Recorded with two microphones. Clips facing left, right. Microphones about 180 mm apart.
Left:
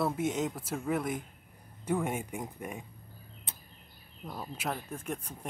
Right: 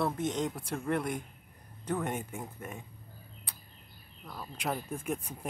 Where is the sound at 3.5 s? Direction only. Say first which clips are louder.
Left 3 dB; 25° left (ahead or behind).